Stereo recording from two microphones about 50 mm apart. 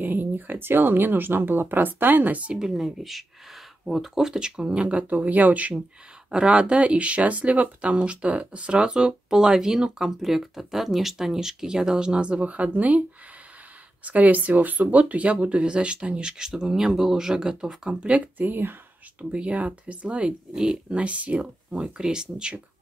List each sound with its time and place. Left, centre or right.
0.0 s speech: right
2.7 s speech: centre
4.8 s speech: right
14.0 s speech: right
18.4 s speech: right
19.3 s speech: right